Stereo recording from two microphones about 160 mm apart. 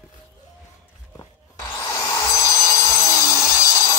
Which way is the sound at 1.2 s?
20° left (ahead or behind).